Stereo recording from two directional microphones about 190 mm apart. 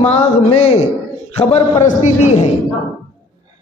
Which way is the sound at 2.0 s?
35° left (ahead or behind).